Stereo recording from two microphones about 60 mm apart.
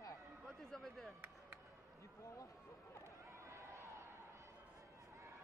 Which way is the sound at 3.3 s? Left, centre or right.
Right.